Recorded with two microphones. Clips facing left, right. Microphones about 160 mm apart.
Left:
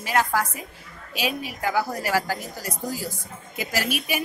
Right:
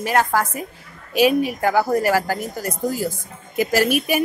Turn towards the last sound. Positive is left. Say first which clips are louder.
# right 8 dB
turn(degrees=-50)  # may be behind; listen again after turning